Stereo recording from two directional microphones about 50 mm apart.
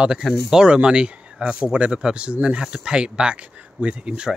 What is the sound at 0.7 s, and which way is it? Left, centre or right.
Speech, centre.